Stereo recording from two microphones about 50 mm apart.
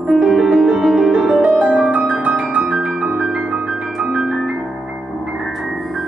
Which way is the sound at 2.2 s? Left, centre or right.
Right.